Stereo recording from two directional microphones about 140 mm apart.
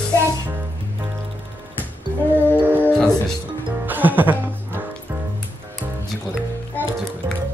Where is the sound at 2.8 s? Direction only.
5° left (ahead or behind).